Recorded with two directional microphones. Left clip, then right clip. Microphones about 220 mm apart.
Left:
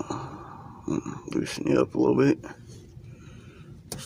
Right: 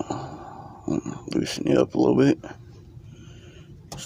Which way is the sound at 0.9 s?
Centre (ahead or behind).